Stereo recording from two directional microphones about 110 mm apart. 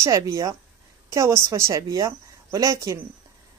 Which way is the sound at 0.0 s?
30° right (ahead or behind).